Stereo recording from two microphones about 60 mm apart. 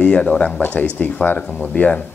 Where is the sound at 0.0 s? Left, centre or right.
Centre.